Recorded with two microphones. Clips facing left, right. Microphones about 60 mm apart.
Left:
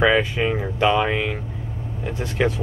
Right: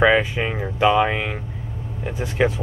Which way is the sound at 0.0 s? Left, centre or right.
Centre.